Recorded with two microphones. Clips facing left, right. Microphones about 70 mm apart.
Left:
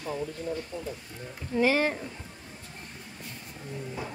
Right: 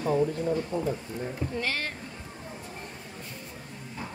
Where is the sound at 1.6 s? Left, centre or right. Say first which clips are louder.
Left 11 dB; centre.